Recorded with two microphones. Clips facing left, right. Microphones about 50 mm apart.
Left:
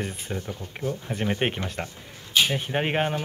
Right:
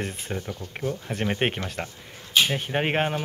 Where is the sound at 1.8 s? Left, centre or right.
Centre.